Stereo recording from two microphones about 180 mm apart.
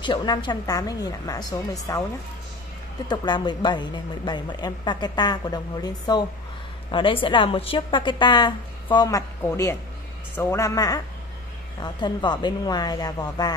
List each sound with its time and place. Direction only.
0.0 s a woman's voice: 25° left (ahead or behind)
3.1 s a woman's voice: 25° left (ahead or behind)